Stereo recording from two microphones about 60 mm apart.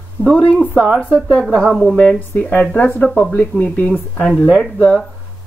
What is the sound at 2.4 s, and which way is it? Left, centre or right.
Speech, left.